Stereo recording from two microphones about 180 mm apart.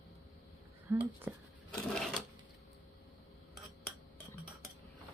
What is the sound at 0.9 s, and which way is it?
Speech, 20° right (ahead or behind).